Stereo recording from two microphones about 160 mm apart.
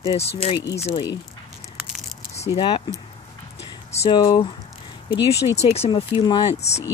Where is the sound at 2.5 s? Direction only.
30° left (ahead or behind).